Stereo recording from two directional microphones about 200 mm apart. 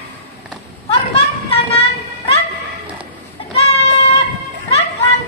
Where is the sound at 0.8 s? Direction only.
30° left (ahead or behind).